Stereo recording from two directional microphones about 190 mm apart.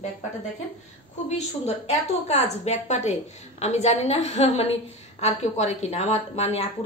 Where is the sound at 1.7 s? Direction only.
35° left (ahead or behind).